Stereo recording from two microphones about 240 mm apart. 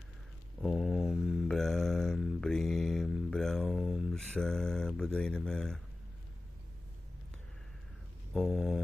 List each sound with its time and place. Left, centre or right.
0.6 s mantra: centre
8.3 s mantra: centre